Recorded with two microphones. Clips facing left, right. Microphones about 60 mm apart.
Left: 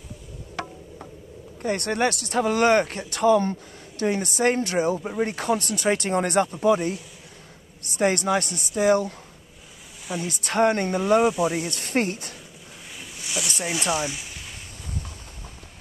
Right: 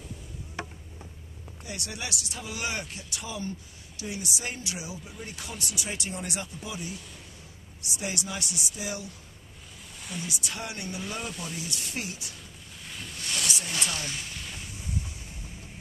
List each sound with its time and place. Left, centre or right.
1.6 s speech: left
10.2 s speech: left
11.7 s speech: left
13.0 s a sound: centre
13.7 s speech: centre